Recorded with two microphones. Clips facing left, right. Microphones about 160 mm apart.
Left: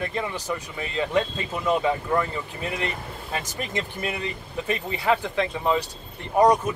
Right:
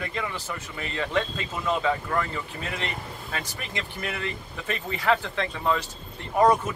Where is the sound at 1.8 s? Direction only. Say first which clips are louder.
Left 2 dB; 20° left (ahead or behind).